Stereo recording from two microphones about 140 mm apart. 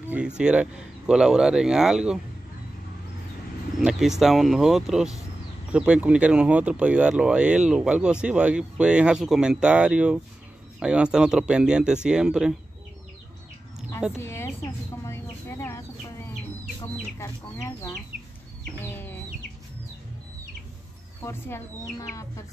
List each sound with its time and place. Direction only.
0.4 s speech: 5° right (ahead or behind)
3.8 s speech: 5° right (ahead or behind)
14.1 s a sound: 20° left (ahead or behind)
17.2 s speech: 20° left (ahead or behind)
18.8 s chicken: 15° left (ahead or behind)
21.2 s speech: 15° left (ahead or behind)